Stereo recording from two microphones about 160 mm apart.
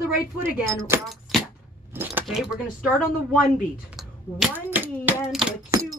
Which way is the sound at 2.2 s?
5° right (ahead or behind).